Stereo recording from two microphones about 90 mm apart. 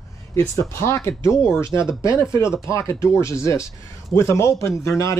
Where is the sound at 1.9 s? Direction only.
35° left (ahead or behind).